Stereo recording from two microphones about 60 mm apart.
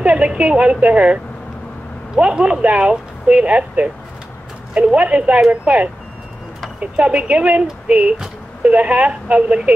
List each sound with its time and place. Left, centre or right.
0.0 s speech: centre
8.6 s speech: right